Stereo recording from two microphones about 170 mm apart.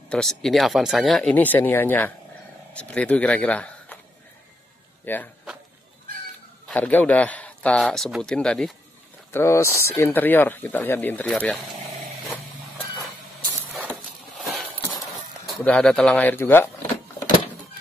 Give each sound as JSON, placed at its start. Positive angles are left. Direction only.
{"t": 0.1, "sound": "speech", "side_deg": 0}
{"t": 5.0, "sound": "speech", "side_deg": 10}
{"t": 6.7, "sound": "speech", "side_deg": 10}
{"t": 9.3, "sound": "speech", "side_deg": 15}
{"t": 14.4, "sound": "a sound", "side_deg": 0}
{"t": 15.4, "sound": "speech", "side_deg": 5}